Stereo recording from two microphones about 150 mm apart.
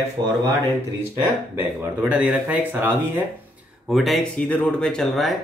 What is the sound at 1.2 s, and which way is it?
Speech, 10° right (ahead or behind).